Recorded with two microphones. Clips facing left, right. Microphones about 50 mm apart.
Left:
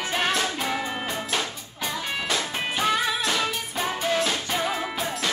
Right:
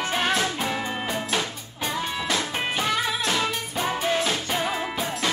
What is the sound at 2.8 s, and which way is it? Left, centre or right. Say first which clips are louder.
Music: left 3 dB; centre.